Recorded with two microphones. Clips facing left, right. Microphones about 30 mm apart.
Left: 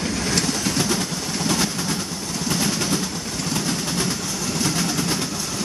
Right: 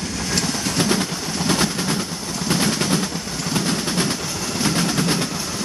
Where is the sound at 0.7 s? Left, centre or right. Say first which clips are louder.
Right 2 dB; right.